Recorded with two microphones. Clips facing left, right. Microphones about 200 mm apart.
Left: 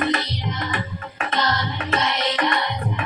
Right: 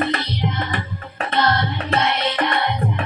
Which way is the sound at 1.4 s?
60° right (ahead or behind).